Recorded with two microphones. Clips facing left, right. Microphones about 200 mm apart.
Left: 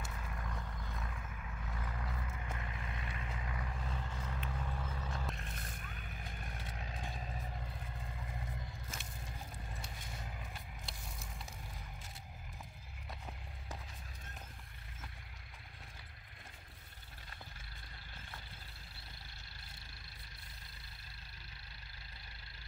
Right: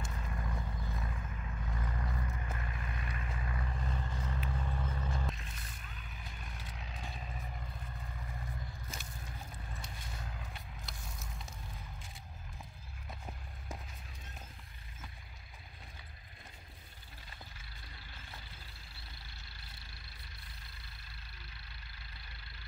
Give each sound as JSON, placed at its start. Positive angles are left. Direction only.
{"t": 0.1, "sound": "vehicle", "side_deg": -5}
{"t": 5.3, "sound": "vehicle", "side_deg": 55}
{"t": 9.8, "sound": "a sound", "side_deg": 5}